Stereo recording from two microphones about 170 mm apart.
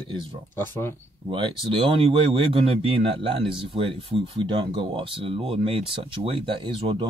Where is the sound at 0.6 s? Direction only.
15° left (ahead or behind).